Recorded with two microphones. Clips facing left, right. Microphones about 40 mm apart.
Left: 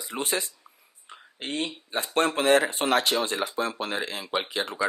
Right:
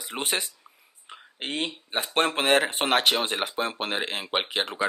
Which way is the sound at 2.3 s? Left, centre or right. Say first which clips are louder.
Left 2 dB; right.